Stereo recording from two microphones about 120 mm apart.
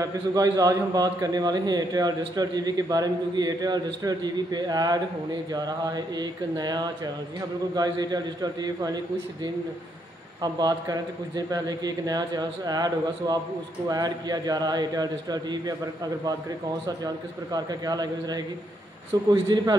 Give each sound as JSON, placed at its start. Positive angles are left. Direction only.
{"t": 0.0, "sound": "a man's voice", "side_deg": -30}
{"t": 16.8, "sound": "a man's voice", "side_deg": -35}